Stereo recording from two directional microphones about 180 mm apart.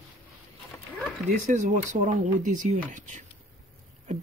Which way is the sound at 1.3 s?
45° right (ahead or behind).